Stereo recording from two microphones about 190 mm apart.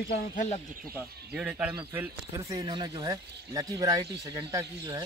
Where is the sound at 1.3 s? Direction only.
10° right (ahead or behind).